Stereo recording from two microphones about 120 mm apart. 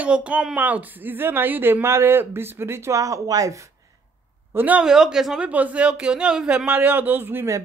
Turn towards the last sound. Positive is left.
turn(degrees=-20)  # may be behind; listen again after turning